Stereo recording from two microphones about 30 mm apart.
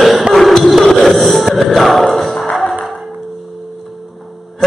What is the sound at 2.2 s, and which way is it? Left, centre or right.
Music, centre.